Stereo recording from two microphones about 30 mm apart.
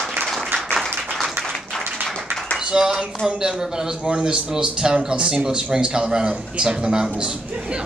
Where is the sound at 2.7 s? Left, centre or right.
Right.